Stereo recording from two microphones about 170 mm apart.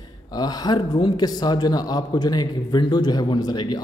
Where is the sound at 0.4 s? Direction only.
25° left (ahead or behind).